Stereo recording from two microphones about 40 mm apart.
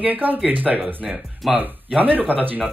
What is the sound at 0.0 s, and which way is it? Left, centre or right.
Speech, right.